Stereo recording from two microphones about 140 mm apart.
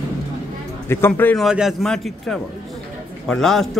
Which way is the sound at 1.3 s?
5° right (ahead or behind).